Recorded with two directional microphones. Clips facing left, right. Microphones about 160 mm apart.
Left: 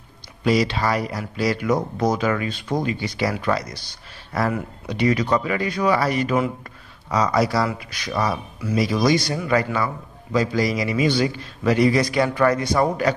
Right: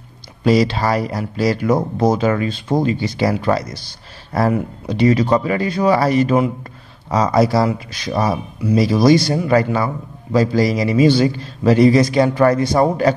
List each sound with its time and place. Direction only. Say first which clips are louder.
0.4 s speech: right 5 dB; 30° right (ahead or behind)